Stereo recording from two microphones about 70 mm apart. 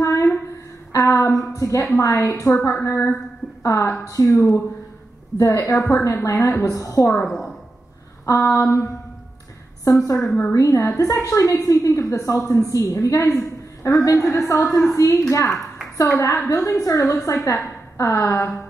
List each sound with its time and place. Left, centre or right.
0.0 s a sound: left
0.9 s a sound: left
1.5 s a woman's voice: left
3.4 s a sound: left
4.1 s a woman's voice: left
7.2 s a woman's voice: centre
8.3 s a woman's voice: left
9.8 s a woman's voice: left
14.0 s a woman's voice: left